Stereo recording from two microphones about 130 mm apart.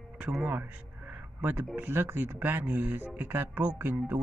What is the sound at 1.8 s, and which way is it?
Speech, 20° right (ahead or behind).